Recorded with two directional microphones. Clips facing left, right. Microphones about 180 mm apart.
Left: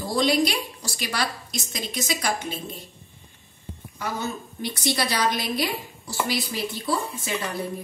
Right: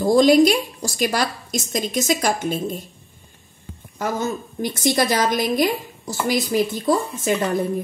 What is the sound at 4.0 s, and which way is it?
A woman's voice, 45° right (ahead or behind).